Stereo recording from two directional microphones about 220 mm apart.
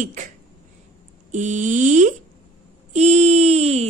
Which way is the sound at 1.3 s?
35° right (ahead or behind).